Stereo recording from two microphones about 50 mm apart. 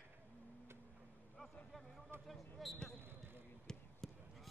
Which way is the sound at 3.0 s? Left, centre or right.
Right.